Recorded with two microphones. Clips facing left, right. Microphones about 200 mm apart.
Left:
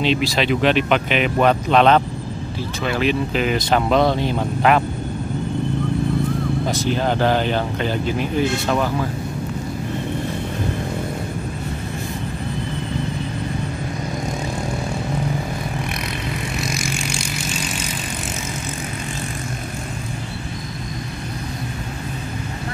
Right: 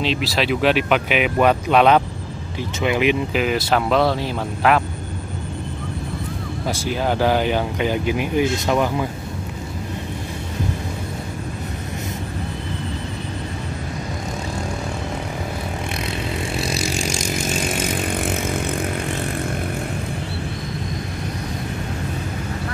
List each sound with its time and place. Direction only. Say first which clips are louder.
0.0 s speech: left 2 dB; centre (ahead or behind)
3.4 s speech: left 1 dB; centre (ahead or behind)
6.7 s speech: right 2 dB; 10° right (ahead or behind)
16.7 s vehicle: right 2 dB; 40° right (ahead or behind)